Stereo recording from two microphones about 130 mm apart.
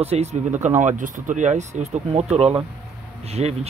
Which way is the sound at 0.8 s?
80° right.